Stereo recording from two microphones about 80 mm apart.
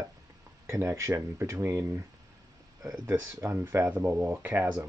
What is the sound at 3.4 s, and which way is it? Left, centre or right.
Speech, right.